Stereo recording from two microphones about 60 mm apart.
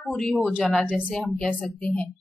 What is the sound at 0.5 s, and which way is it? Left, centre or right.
A woman's voice, left.